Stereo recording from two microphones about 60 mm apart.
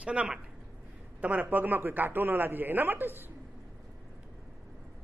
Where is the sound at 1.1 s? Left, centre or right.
Right.